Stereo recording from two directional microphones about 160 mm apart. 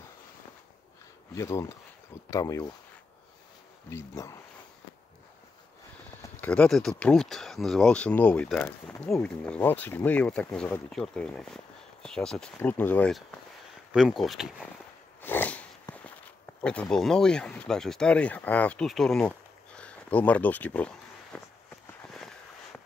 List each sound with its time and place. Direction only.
1.3 s speech: 20° left (ahead or behind)
3.9 s speech: 20° left (ahead or behind)
6.4 s speech: 5° left (ahead or behind)
13.9 s speech: centre (ahead or behind)
15.2 s a sound: 10° left (ahead or behind)
16.9 s speech: 5° left (ahead or behind)